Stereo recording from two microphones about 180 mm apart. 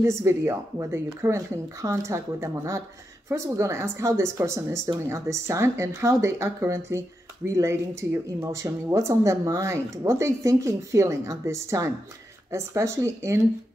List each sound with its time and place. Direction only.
0.0 s speech: 15° right (ahead or behind)